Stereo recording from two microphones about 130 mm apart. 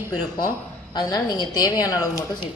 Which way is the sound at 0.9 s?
30° left (ahead or behind).